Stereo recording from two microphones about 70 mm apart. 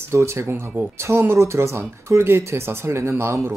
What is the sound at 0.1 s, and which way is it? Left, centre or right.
Speech, right.